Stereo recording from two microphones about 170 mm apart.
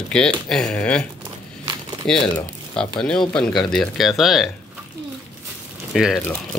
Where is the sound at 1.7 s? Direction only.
25° right (ahead or behind).